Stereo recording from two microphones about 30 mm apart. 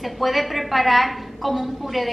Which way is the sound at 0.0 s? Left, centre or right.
Centre.